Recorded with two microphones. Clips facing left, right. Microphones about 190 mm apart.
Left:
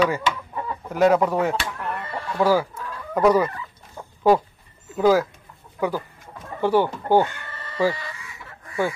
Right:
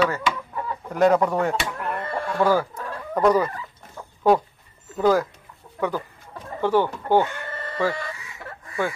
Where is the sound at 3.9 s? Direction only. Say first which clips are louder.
Left 1 dB; 5° left (ahead or behind).